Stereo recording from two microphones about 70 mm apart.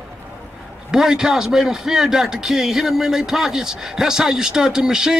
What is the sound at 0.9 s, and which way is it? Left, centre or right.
Speech, centre.